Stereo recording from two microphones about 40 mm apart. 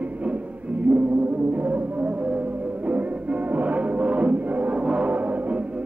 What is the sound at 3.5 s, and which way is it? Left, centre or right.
Music, right.